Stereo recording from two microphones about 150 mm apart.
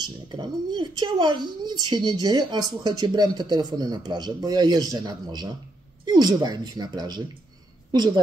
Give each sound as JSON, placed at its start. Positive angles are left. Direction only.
{"t": 0.3, "sound": "a woman's voice", "side_deg": -30}